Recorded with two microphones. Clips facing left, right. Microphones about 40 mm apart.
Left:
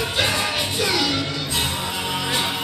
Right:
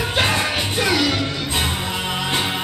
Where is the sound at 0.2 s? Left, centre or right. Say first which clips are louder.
Right 2 dB; right.